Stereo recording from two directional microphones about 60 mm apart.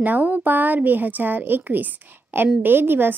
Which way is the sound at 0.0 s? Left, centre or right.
Right.